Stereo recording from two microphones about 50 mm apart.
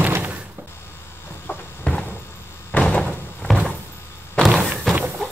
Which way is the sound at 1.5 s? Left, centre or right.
Left.